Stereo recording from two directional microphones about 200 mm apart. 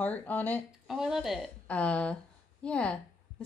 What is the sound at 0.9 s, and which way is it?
Speech, centre (ahead or behind).